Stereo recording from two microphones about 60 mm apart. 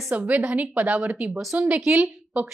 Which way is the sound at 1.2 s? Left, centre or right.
Centre.